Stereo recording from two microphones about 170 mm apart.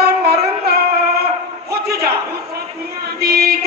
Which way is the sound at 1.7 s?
70° right (ahead or behind).